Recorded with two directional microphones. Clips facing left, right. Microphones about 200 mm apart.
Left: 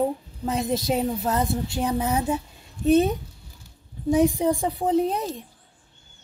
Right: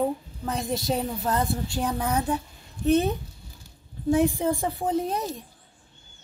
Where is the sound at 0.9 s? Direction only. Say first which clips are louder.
Left 2 dB; 20° left (ahead or behind).